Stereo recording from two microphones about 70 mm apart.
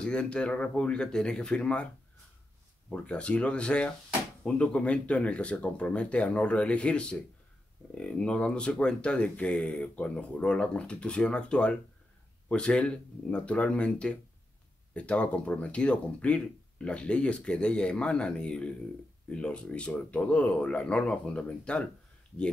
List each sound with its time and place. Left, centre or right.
0.0 s speech: centre
2.9 s speech: centre